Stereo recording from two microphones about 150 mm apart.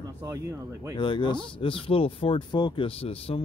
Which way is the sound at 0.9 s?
30° left (ahead or behind).